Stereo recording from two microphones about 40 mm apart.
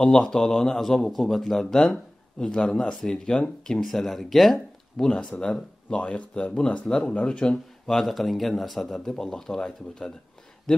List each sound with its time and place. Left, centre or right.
0.0 s speech: centre
1.8 s a sound: left
2.5 s speech: left; by 5.0 s centre
5.4 s speech: left
7.8 s speech: centre